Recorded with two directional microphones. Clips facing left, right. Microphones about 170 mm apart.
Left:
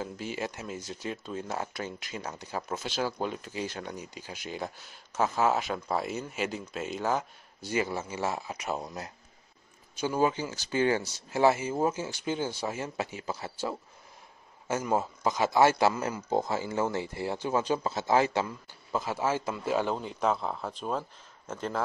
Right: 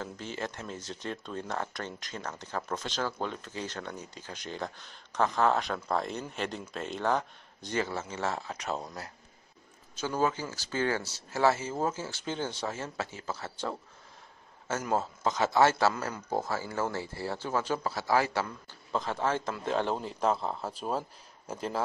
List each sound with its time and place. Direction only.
0.0 s speech: 10° left (ahead or behind)
14.9 s speech: 10° left (ahead or behind)
18.9 s speech: 10° left (ahead or behind)